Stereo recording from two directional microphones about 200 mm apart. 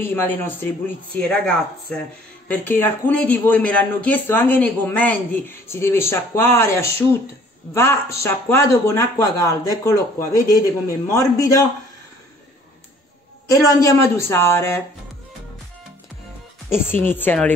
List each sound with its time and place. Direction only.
0.0 s speech: 10° left (ahead or behind)
13.7 s speech: 15° left (ahead or behind)
16.6 s speech: 10° left (ahead or behind)